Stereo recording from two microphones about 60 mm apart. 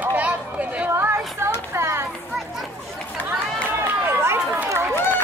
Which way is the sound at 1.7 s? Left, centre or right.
Right.